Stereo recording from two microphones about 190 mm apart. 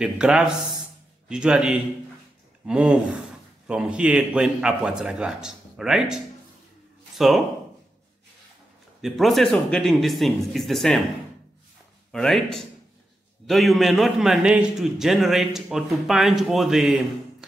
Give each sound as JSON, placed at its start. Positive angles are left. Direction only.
{"t": 0.0, "sound": "a man's voice", "side_deg": -5}
{"t": 9.0, "sound": "a man's voice", "side_deg": 0}
{"t": 12.1, "sound": "a man's voice", "side_deg": 0}